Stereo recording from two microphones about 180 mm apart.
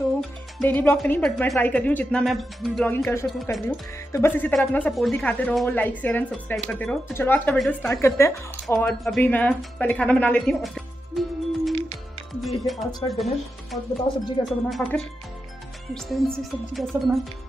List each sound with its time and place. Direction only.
0.2 s speech: 5° left (ahead or behind)
3.5 s speech: centre (ahead or behind)
4.1 s speech: 10° left (ahead or behind)
7.9 s speech: 15° left (ahead or behind)
8.7 s speech: centre (ahead or behind)
14.4 s speech: 25° left (ahead or behind)
14.7 s speech: 5° left (ahead or behind)